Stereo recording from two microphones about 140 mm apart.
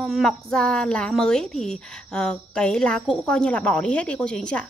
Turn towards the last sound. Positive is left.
turn(degrees=5)  # may be behind; listen again after turning